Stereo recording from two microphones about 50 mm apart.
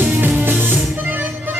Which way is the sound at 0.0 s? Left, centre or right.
Right.